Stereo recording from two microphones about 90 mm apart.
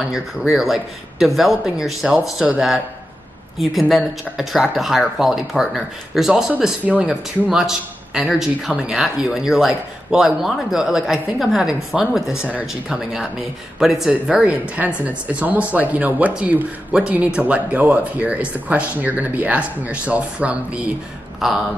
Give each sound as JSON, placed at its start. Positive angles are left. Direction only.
{"t": 0.1, "sound": "speech", "side_deg": -5}
{"t": 3.9, "sound": "speech", "side_deg": 0}
{"t": 6.8, "sound": "speech", "side_deg": -15}
{"t": 7.5, "sound": "speech", "side_deg": -5}
{"t": 14.2, "sound": "speech", "side_deg": -15}
{"t": 21.4, "sound": "speech", "side_deg": -5}